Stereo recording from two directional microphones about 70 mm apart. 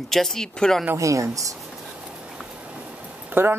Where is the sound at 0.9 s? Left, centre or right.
Right.